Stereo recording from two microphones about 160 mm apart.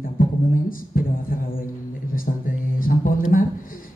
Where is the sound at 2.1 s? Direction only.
60° left (ahead or behind).